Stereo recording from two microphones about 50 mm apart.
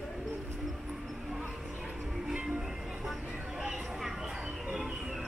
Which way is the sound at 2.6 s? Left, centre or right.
Centre.